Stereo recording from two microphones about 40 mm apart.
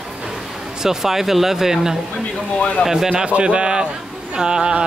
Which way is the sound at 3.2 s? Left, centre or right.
Right.